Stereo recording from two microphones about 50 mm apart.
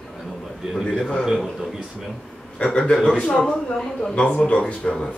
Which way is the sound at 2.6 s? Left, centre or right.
Centre.